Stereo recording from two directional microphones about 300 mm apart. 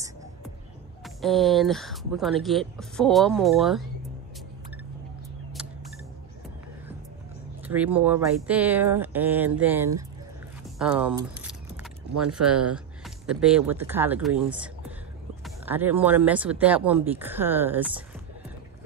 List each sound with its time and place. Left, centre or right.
1.0 s speech: centre
7.6 s speech: centre
10.8 s keys jangling: centre
12.3 s speech: right
12.7 s speech: centre